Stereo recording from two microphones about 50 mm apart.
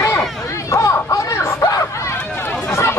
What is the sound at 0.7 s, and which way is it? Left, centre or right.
Chatter, left.